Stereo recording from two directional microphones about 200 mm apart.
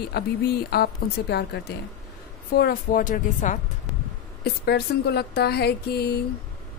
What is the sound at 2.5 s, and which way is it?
A woman's voice, 50° left (ahead or behind).